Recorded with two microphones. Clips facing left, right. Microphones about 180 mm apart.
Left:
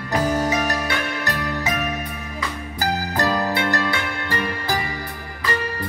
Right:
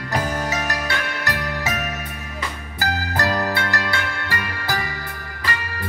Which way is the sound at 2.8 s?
15° left (ahead or behind).